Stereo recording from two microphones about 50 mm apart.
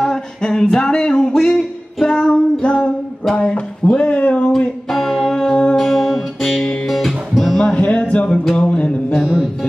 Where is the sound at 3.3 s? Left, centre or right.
Left.